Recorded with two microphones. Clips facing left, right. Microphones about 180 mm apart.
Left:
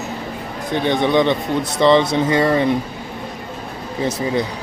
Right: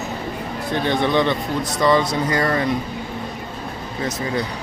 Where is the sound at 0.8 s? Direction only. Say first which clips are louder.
Left 3 dB; 20° left (ahead or behind).